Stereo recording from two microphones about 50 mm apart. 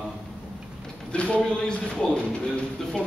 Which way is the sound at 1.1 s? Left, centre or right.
Left.